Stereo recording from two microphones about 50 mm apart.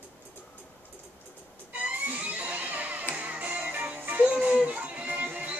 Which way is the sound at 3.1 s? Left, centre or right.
Right.